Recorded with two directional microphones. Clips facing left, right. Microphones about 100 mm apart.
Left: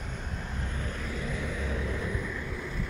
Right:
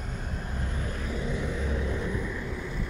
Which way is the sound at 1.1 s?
20° right (ahead or behind).